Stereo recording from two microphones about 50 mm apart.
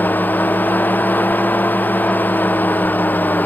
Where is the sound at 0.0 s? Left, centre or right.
Left.